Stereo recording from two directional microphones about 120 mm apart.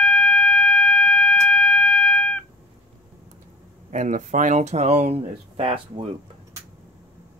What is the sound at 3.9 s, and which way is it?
Speech, 90° right.